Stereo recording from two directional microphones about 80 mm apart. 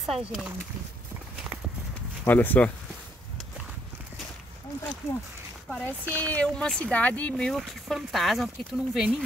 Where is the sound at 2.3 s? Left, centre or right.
Left.